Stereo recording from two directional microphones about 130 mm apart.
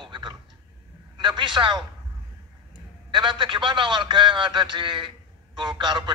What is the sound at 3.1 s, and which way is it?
A man's voice, 40° right (ahead or behind).